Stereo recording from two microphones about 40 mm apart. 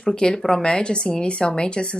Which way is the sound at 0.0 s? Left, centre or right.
Centre.